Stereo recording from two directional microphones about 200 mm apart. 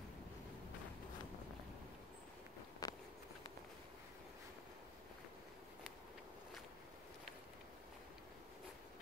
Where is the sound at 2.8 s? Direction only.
20° left (ahead or behind).